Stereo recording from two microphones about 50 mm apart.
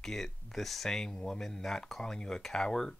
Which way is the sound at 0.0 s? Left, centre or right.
Centre.